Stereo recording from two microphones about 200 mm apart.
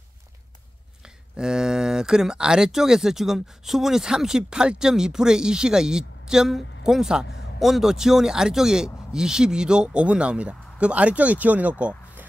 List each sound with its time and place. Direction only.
1.0 s speech: 5° right (ahead or behind)